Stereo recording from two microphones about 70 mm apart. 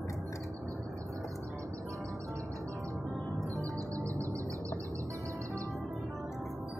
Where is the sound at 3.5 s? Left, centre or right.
Right.